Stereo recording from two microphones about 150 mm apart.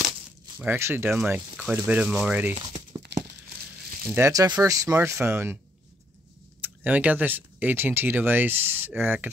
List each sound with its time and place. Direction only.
0.6 s speech: 15° right (ahead or behind)
2.9 s a sound: 30° right (ahead or behind)
4.1 s speech: 20° right (ahead or behind)
6.6 s speech: 10° right (ahead or behind)